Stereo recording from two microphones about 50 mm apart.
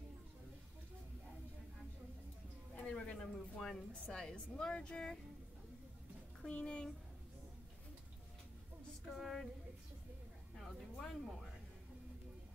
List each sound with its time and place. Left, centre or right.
2.8 s a woman's voice: centre
6.4 s speech: centre
9.0 s female singing: centre
10.5 s a sound: centre